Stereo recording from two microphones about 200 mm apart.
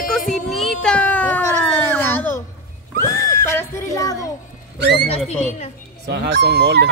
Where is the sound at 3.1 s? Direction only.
15° left (ahead or behind).